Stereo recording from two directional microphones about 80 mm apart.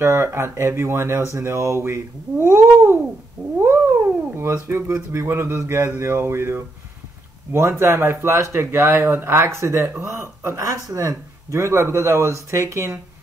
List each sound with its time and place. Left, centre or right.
0.0 s speech: right
3.5 s cat: right
4.6 s speech: right